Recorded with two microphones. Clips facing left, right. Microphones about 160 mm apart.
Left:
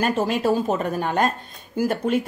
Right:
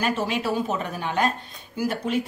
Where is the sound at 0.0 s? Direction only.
45° left (ahead or behind).